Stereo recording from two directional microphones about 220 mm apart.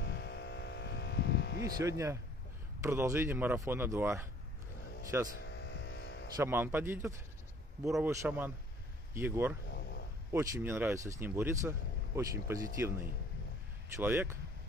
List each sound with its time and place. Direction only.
0.0 s a sound: 50° left (ahead or behind)
1.9 s speech: 15° right (ahead or behind)
5.5 s hum: 55° left (ahead or behind)
6.3 s speech: 10° right (ahead or behind)
13.9 s speech: 10° right (ahead or behind)